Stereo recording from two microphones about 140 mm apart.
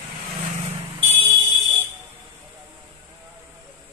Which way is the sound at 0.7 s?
40° right (ahead or behind).